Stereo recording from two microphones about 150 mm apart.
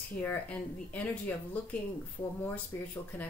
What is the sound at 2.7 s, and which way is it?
Speech, 20° left (ahead or behind).